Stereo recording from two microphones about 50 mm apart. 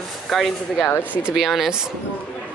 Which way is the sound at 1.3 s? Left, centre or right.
Centre.